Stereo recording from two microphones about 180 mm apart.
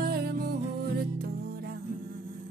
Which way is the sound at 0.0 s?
60° right (ahead or behind).